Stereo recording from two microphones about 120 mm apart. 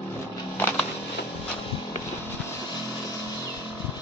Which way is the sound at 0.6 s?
15° left (ahead or behind).